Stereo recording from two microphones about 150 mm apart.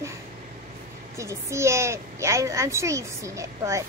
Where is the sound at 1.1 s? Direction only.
20° right (ahead or behind).